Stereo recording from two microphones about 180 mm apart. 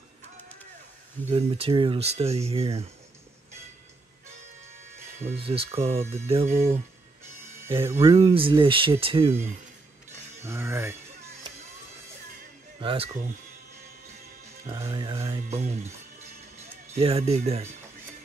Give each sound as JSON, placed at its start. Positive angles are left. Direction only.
{"t": 1.3, "sound": "speech", "side_deg": -30}
{"t": 5.2, "sound": "speech", "side_deg": -30}
{"t": 10.4, "sound": "speech", "side_deg": -15}
{"t": 12.8, "sound": "speech", "side_deg": -30}
{"t": 14.7, "sound": "speech", "side_deg": -20}